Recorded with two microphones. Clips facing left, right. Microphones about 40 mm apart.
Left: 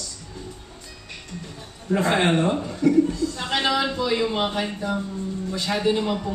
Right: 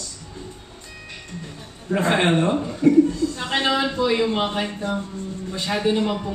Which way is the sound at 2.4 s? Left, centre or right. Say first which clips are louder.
Right 2 dB; centre.